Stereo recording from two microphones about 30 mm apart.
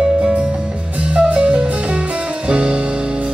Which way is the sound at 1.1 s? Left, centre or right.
Right.